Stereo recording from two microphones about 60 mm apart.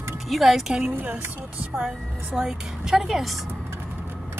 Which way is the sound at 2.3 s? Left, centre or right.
Centre.